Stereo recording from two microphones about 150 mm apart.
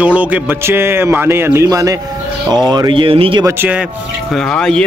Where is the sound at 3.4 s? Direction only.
10° right (ahead or behind).